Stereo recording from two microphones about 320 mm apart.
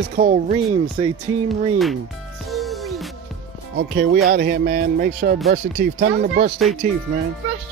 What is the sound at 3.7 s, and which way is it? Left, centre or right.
Speech, right.